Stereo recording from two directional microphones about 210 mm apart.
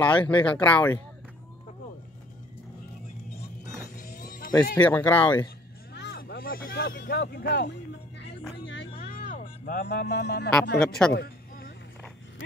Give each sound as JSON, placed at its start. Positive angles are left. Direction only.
{"t": 0.0, "sound": "speech", "side_deg": 5}
{"t": 4.2, "sound": "music", "side_deg": 40}
{"t": 4.7, "sound": "speech", "side_deg": 5}
{"t": 5.9, "sound": "speech", "side_deg": 50}
{"t": 8.9, "sound": "music", "side_deg": 40}
{"t": 10.8, "sound": "speech", "side_deg": 5}
{"t": 11.1, "sound": "a sound", "side_deg": 45}